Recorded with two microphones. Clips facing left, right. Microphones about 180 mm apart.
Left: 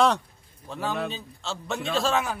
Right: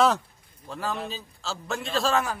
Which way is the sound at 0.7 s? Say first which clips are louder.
Left 2 dB; centre (ahead or behind).